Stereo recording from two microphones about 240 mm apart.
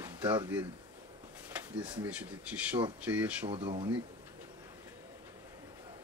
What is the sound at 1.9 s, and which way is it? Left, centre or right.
Speech, centre.